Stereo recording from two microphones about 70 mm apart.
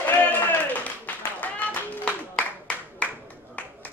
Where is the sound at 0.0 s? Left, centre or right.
Left.